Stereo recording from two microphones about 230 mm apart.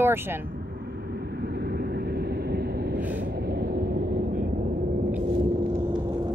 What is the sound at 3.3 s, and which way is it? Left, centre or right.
Vehicle, right.